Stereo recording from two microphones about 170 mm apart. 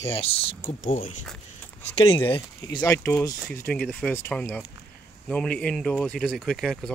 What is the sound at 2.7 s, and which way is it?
Speech, 20° left (ahead or behind).